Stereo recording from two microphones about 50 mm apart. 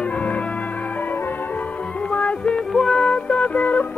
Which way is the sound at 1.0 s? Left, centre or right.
Left.